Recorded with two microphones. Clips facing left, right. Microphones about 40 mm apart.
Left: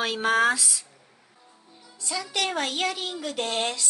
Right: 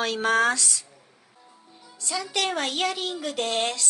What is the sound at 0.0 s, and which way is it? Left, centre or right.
Speech, centre.